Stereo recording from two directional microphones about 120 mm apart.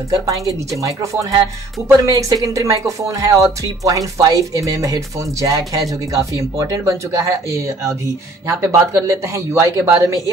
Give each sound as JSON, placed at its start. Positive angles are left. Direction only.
{"t": 0.1, "sound": "speech", "side_deg": -30}